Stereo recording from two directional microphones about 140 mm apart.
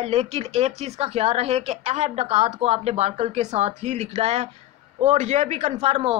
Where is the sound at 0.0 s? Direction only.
50° right (ahead or behind).